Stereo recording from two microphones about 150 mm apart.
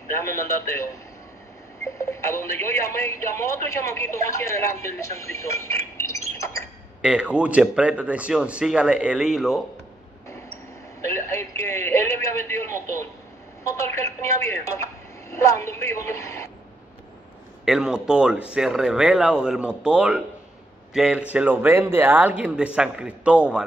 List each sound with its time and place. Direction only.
0.2 s speech: 20° left (ahead or behind)
1.9 s speech: 20° left (ahead or behind)
7.0 s a man's voice: 5° right (ahead or behind)
11.0 s a man's voice: 20° left (ahead or behind)
17.6 s a man's voice: 5° right (ahead or behind)